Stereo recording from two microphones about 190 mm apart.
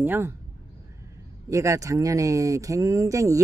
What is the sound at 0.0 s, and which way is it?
Speech, 10° right (ahead or behind).